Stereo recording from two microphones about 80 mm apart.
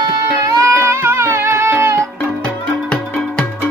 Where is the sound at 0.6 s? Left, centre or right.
Right.